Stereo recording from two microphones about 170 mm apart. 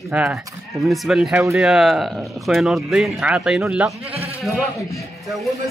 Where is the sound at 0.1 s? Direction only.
5° right (ahead or behind).